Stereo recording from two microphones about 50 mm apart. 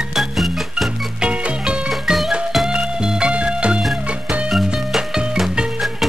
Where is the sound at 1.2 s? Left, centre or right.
Right.